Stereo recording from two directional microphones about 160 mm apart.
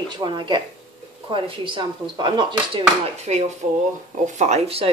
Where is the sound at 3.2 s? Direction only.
45° right (ahead or behind).